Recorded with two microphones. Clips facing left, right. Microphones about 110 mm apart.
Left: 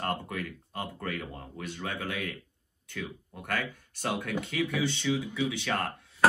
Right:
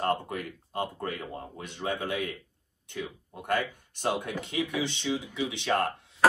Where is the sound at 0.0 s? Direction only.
25° right (ahead or behind).